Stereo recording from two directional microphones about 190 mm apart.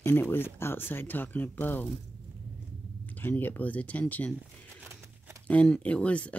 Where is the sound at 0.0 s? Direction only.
10° left (ahead or behind).